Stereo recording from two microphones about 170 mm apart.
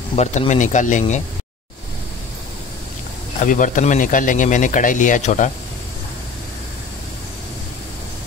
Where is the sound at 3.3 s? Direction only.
50° left (ahead or behind).